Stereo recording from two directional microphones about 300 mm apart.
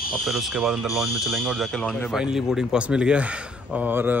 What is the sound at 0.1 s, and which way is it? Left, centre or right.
Speech, centre.